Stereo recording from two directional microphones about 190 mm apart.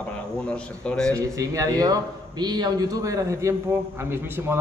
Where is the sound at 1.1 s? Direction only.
20° right (ahead or behind).